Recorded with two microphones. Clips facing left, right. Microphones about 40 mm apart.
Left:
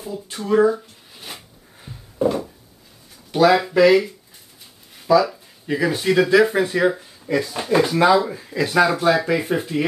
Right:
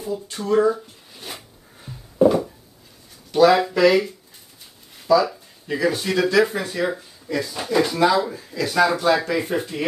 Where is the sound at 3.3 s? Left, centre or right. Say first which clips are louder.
Even; centre.